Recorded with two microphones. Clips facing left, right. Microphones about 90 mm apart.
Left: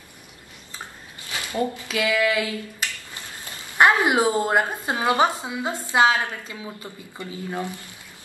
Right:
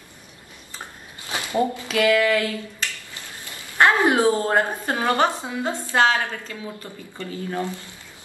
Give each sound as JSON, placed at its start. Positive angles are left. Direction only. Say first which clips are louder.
{"t": 1.3, "sound": "a sound", "louder": "right 3 dB", "side_deg": -25}
{"t": 2.0, "sound": "a woman's voice", "louder": "right 3 dB", "side_deg": 5}
{"t": 3.7, "sound": "a woman's voice", "louder": "even", "side_deg": 15}